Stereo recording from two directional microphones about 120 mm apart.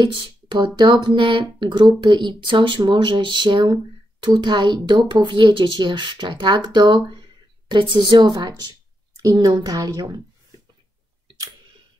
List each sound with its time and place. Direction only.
0.0 s a woman's voice: 40° right (ahead or behind)